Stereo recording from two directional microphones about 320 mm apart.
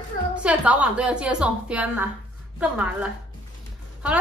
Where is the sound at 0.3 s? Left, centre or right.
Centre.